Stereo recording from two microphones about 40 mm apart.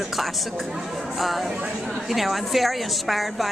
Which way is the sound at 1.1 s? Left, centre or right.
Centre.